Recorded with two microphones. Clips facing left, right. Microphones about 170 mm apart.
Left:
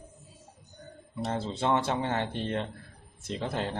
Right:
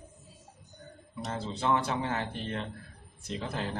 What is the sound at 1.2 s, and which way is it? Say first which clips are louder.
Speech: left 2 dB; 30° left (ahead or behind).